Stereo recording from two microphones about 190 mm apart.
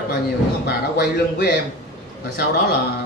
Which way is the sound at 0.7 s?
55° left (ahead or behind).